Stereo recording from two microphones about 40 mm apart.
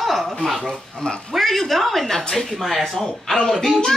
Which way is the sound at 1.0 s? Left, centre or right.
Left.